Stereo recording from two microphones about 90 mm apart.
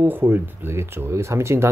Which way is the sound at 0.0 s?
20° right (ahead or behind).